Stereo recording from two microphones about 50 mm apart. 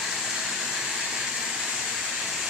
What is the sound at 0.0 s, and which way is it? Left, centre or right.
Vehicle, centre.